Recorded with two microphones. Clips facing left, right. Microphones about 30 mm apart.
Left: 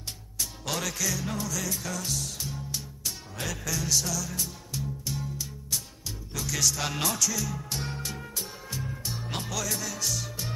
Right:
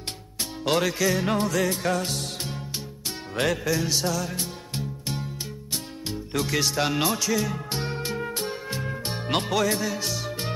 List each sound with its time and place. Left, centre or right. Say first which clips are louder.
0.4 s speech: right 8 dB; right
1.1 s music: right 9 dB; right
3.6 s music: right 5 dB; right
6.9 s speech: right 5 dB; right
7.8 s music: right 7 dB; right
8.4 s music: right 7 dB; right